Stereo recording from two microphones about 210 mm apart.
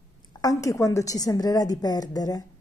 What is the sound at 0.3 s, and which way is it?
A woman's voice, 15° left (ahead or behind).